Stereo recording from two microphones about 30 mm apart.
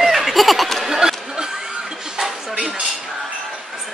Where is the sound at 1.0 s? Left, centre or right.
Centre.